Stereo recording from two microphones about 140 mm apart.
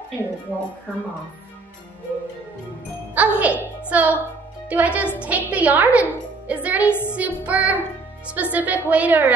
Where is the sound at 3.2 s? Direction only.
10° right (ahead or behind).